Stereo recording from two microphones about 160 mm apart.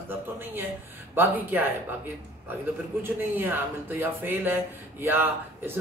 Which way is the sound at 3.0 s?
15° right (ahead or behind).